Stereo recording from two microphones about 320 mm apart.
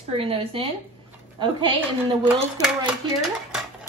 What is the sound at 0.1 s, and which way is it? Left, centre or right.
Speech, centre.